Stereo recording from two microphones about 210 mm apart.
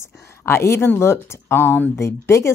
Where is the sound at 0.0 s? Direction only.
15° left (ahead or behind).